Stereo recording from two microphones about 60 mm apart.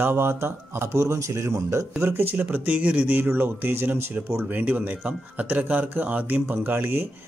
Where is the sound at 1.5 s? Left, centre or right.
Right.